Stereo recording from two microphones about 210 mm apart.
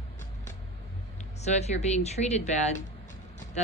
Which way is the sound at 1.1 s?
30° left (ahead or behind).